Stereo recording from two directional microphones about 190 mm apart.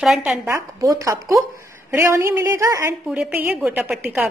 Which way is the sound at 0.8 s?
20° right (ahead or behind).